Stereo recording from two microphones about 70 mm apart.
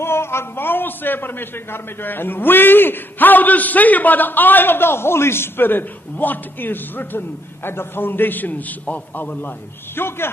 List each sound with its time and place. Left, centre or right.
0.0 s a man's voice: left